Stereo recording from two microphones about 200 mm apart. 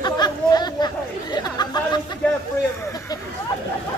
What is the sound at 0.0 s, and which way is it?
Chatter, 20° left (ahead or behind).